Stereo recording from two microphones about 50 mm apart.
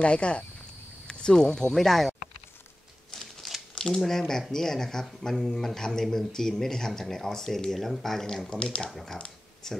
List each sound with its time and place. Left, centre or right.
0.0 s speech: left; by 2.1 s centre
3.1 s a sound: centre
3.7 s speech: centre
8.5 s speech: left
8.9 s speech: centre